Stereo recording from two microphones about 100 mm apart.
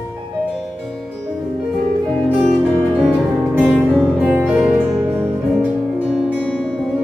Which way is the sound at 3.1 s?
15° right (ahead or behind).